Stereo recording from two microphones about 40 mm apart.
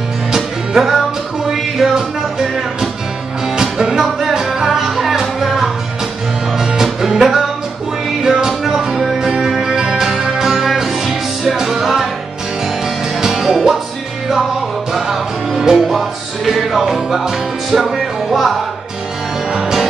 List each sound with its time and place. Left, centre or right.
0.3 s music: centre
13.2 s music: centre
14.9 s music: centre
19.5 s music: centre